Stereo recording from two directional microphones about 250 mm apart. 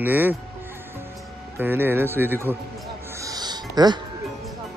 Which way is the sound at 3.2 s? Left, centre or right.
Centre.